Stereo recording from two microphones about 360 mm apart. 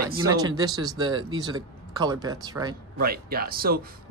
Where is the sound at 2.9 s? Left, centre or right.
Right.